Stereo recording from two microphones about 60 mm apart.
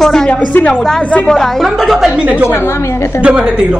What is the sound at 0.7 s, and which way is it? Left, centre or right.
A woman's voice, centre.